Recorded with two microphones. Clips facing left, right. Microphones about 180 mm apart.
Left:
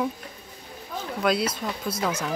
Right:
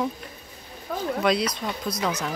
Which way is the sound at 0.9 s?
55° right (ahead or behind).